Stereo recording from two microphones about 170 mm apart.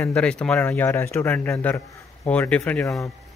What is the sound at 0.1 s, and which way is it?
Speech, 5° left (ahead or behind).